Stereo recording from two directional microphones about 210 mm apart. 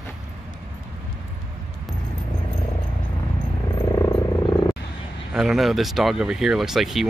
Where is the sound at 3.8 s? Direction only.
15° left (ahead or behind).